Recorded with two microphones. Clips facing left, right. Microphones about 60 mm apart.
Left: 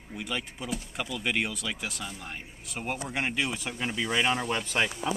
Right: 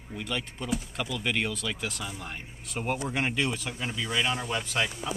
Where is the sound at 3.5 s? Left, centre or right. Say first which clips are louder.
Left 2 dB; left.